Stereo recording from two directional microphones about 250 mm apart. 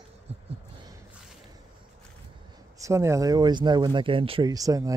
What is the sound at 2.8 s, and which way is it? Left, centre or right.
Speech, centre.